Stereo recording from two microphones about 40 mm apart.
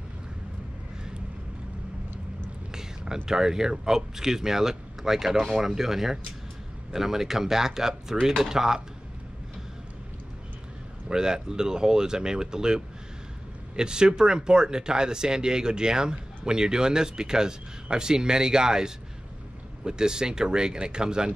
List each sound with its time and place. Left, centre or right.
2.7 s a sound: centre
3.3 s speech: centre
11.1 s speech: centre